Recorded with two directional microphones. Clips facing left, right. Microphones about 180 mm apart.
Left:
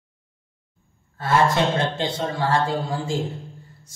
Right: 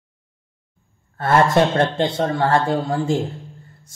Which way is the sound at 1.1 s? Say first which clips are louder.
Right 4 dB; 55° right (ahead or behind).